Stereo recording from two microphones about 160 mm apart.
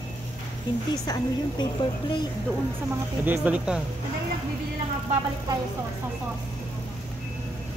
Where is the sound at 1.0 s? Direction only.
25° left (ahead or behind).